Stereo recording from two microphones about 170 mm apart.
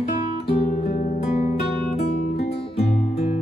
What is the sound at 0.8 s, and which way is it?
Music, 45° left (ahead or behind).